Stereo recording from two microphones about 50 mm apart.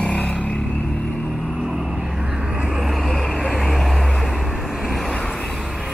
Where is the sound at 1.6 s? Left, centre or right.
Centre.